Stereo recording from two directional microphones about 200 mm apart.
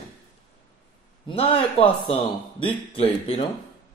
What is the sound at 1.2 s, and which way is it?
A man's voice, 25° left (ahead or behind).